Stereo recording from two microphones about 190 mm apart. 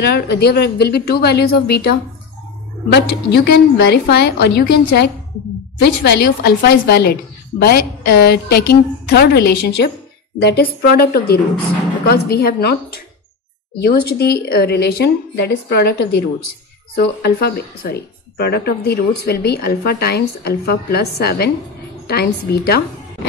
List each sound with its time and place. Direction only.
0.0 s a woman's voice: 60° left (ahead or behind)